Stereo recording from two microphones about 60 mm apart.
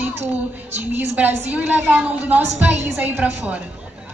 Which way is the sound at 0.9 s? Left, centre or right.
Right.